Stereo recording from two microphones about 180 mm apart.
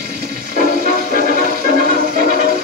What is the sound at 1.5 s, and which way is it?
Music, 55° right (ahead or behind).